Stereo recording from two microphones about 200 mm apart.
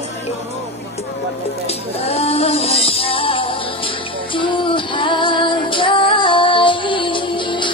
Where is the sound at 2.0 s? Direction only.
30° left (ahead or behind).